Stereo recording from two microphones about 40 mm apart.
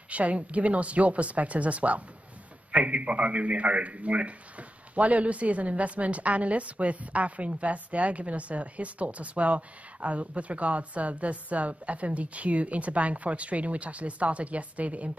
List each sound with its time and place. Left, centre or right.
0.1 s a man's voice: right